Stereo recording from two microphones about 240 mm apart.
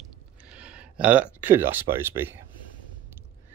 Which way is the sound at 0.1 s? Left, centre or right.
Centre.